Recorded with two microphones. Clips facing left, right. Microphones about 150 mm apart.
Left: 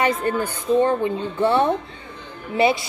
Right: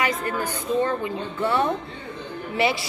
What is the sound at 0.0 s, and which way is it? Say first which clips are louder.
A woman's voice: left 4 dB; 30° left (ahead or behind).